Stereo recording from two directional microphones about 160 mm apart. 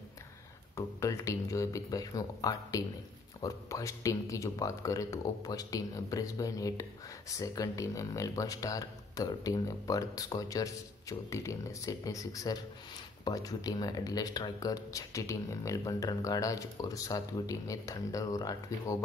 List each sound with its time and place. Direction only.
0.7 s speech: 20° left (ahead or behind)